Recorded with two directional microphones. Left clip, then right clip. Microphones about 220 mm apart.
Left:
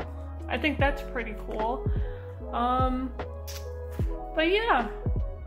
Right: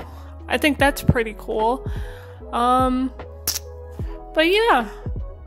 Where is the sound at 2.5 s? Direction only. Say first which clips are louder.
Right 8 dB; 60° right (ahead or behind).